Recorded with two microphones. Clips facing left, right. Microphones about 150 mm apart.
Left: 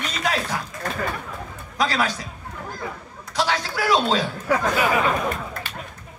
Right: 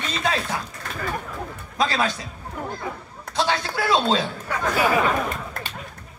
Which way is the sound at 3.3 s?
25° right (ahead or behind).